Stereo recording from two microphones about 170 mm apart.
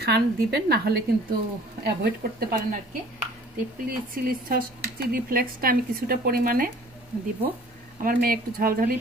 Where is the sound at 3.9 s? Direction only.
60° right (ahead or behind).